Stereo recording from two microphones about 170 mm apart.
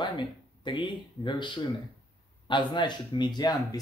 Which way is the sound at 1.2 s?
30° left (ahead or behind).